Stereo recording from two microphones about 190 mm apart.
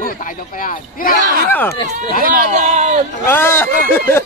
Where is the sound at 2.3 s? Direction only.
45° right (ahead or behind).